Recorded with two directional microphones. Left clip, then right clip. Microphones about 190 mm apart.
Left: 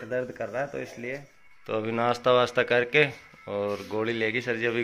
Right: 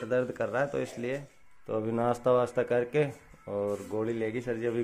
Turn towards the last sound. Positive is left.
turn(degrees=-5)  # may be behind; listen again after turning